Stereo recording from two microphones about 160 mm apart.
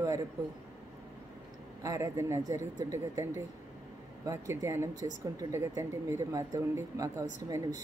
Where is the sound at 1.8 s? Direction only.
20° right (ahead or behind).